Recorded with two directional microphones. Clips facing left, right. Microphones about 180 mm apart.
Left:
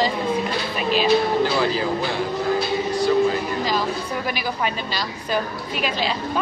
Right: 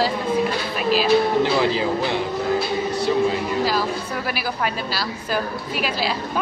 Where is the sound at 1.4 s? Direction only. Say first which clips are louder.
Right 1 dB; 20° right (ahead or behind).